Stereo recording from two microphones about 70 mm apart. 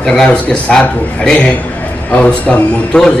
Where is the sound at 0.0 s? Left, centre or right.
Centre.